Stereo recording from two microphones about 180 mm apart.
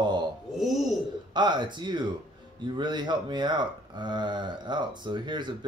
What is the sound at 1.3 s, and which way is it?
Speech, 25° right (ahead or behind).